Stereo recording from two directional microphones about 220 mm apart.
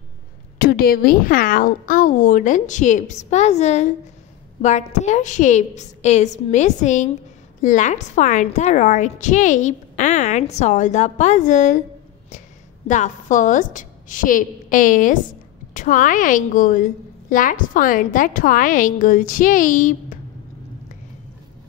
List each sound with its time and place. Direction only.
0.6 s a woman's voice: 45° left (ahead or behind)
12.8 s a woman's voice: 35° left (ahead or behind)